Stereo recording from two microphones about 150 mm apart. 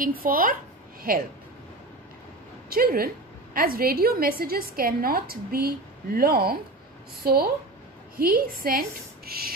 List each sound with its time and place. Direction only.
0.0 s a woman's voice: 70° right (ahead or behind)
2.7 s a woman's voice: 75° right (ahead or behind)
6.1 s speech: 90° right
8.2 s a woman's voice: 75° right (ahead or behind)